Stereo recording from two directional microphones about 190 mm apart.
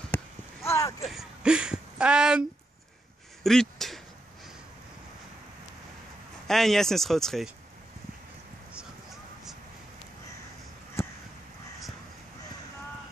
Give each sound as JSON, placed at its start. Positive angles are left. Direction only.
{"t": 0.1, "sound": "a sound", "side_deg": 10}
{"t": 1.0, "sound": "speech", "side_deg": -5}
{"t": 3.4, "sound": "speech", "side_deg": 0}
{"t": 6.4, "sound": "speech", "side_deg": 0}
{"t": 8.7, "sound": "vehicle", "side_deg": 0}